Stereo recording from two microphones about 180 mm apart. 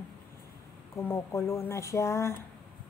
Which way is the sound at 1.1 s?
15° left (ahead or behind).